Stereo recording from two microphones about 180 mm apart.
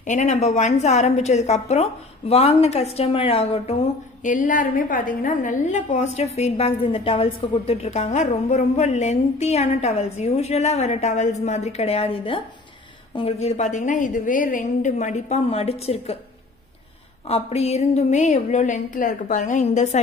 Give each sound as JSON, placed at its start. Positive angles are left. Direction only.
{"t": 0.0, "sound": "a woman's voice", "side_deg": 40}
{"t": 4.2, "sound": "a woman's voice", "side_deg": 45}
{"t": 17.3, "sound": "a woman's voice", "side_deg": 35}